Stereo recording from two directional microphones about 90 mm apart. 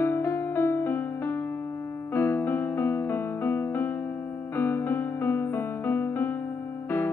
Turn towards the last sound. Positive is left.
turn(degrees=25)  # may be behind; listen again after turning